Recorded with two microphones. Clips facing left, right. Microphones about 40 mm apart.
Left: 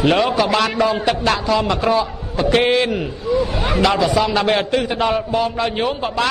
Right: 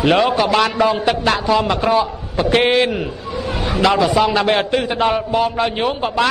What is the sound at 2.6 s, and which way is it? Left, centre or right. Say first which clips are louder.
Speech: right 3 dB; right.